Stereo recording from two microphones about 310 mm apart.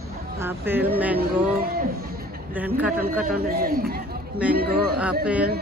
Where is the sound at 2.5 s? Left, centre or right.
Centre.